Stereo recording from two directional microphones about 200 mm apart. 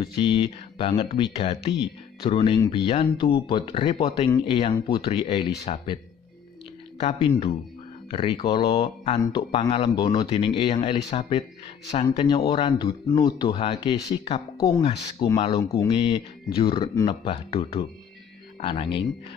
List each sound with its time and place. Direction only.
0.0 s speech: 25° left (ahead or behind)
7.0 s speech: 30° left (ahead or behind)